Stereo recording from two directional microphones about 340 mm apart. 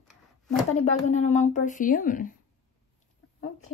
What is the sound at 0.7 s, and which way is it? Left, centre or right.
Speech, centre.